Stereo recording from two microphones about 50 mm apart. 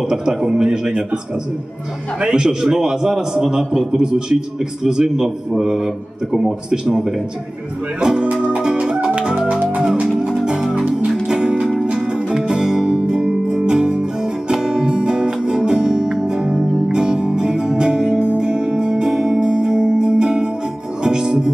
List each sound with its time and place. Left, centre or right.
0.0 s a man's voice: centre
2.2 s a man's voice: centre
8.0 s music: centre